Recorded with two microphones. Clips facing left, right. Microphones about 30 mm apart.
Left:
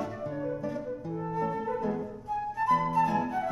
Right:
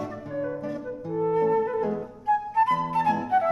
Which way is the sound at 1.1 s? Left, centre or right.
Right.